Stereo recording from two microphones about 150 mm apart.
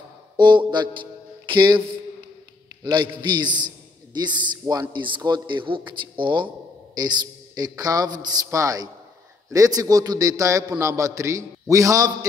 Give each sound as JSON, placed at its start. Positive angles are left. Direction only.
{"t": 0.4, "sound": "a man's voice", "side_deg": -30}
{"t": 2.8, "sound": "a man's voice", "side_deg": -30}